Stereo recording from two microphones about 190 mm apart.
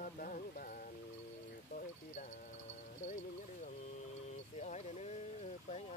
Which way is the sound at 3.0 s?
35° left (ahead or behind).